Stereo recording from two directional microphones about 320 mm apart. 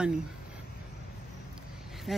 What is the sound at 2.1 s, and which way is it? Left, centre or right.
Speech, centre.